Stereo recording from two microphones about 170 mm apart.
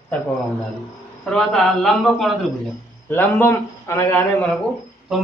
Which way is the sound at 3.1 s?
15° left (ahead or behind).